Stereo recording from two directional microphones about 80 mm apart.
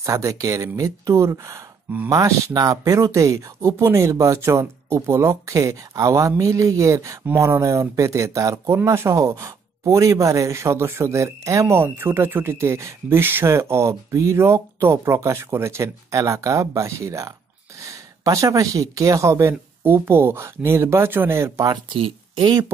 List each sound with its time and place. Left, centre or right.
0.0 s speech: right
11.7 s speech: right
21.8 s speech: right